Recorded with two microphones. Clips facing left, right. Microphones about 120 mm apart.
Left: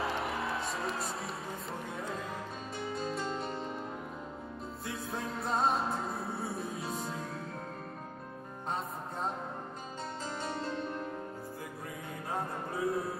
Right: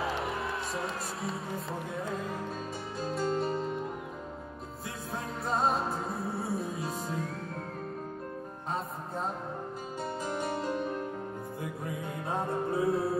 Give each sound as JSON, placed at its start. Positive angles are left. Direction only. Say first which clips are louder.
{"t": 0.0, "sound": "speech", "louder": "right 1 dB", "side_deg": 0}
{"t": 3.0, "sound": "music", "louder": "right 7 dB", "side_deg": 0}
{"t": 4.8, "sound": "music", "louder": "even", "side_deg": 0}
{"t": 10.2, "sound": "music", "louder": "right 5 dB", "side_deg": -15}
{"t": 12.3, "sound": "music", "louder": "right 6 dB", "side_deg": -30}